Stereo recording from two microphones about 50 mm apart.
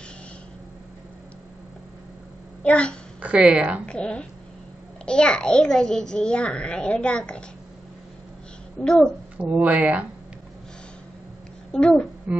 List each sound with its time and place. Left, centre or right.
2.6 s a child's voice: left
3.2 s speech: right
3.8 s a child's voice: left
8.8 s a woman's voice: centre
9.4 s speech: right
11.7 s a woman's voice: centre